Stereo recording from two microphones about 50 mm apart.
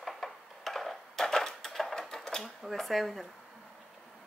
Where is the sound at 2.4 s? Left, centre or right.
Centre.